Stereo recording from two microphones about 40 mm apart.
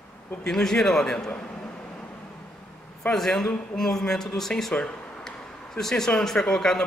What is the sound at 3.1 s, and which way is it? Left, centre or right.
A man's voice, centre.